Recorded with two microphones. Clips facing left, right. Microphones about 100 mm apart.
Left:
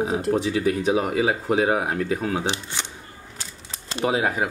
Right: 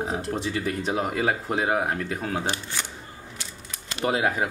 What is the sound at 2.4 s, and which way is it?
Speech, 20° left (ahead or behind).